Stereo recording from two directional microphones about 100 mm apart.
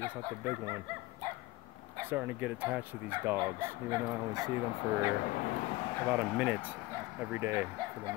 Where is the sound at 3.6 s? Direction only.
35° right (ahead or behind).